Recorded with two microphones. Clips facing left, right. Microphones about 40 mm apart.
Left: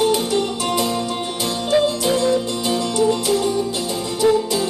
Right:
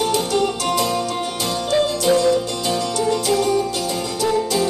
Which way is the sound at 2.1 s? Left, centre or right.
Left.